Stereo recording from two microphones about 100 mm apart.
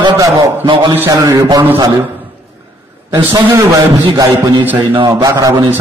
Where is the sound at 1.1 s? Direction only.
35° right (ahead or behind).